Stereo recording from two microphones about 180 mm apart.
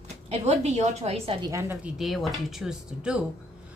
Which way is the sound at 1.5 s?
15° right (ahead or behind).